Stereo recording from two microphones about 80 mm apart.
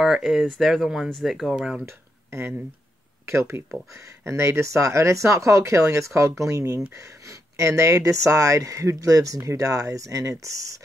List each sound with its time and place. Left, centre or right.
0.0 s speech: centre
1.9 s a sound: right
3.3 s speech: right